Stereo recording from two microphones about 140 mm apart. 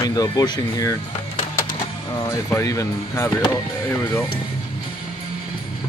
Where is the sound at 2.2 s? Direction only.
20° left (ahead or behind).